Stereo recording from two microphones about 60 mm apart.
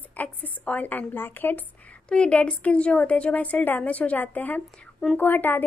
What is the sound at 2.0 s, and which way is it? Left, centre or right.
A woman's voice, centre.